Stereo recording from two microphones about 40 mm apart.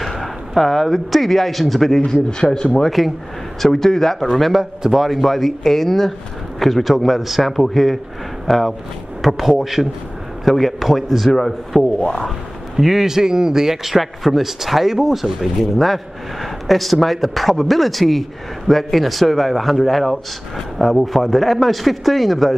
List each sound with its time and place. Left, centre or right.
0.0 s speech: centre
2.5 s a man's voice: centre
12.0 s speech: left
12.7 s a man's voice: centre
15.8 s a man's voice: centre